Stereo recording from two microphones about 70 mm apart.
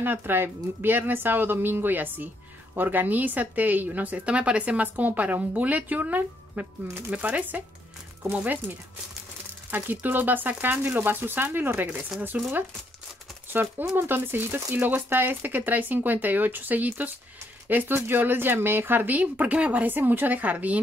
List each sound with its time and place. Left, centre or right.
0.0 s speech: right
13.5 s speech: right